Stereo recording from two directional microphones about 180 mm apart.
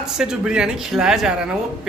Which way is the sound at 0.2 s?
5° right (ahead or behind).